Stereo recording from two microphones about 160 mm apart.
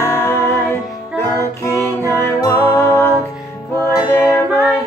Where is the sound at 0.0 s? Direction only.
15° left (ahead or behind).